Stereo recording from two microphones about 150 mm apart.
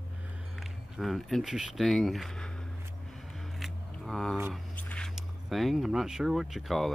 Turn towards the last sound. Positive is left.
turn(degrees=0)  # may be behind; listen again after turning